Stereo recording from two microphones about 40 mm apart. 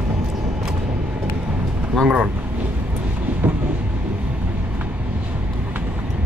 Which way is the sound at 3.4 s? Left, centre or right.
Right.